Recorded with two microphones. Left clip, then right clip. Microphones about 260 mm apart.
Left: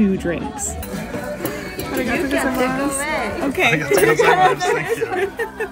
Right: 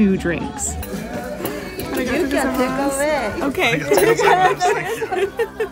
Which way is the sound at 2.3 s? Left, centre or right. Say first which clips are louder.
Even; right.